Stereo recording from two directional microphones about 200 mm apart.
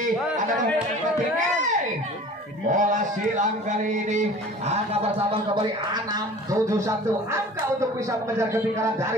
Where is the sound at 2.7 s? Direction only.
40° right (ahead or behind).